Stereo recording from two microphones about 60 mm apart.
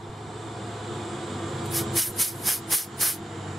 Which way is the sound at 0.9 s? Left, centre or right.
Centre.